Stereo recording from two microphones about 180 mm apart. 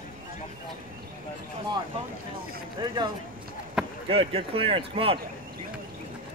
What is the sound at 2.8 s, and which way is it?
Speech, 25° right (ahead or behind).